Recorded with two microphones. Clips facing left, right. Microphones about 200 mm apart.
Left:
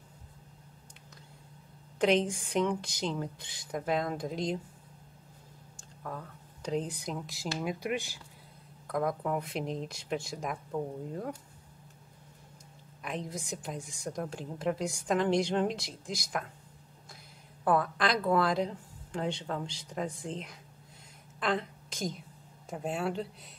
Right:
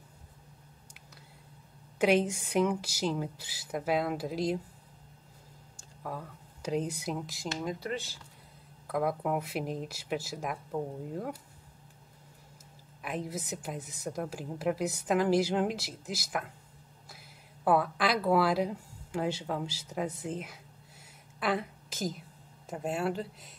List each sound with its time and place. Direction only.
2.0 s speech: 5° right (ahead or behind)
6.0 s speech: 10° right (ahead or behind)
7.8 s speech: 15° left (ahead or behind)
8.8 s a woman's voice: 5° right (ahead or behind)
13.0 s a woman's voice: 5° right (ahead or behind)
17.6 s a woman's voice: 5° right (ahead or behind)